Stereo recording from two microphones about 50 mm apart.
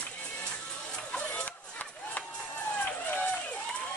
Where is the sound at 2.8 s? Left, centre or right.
Left.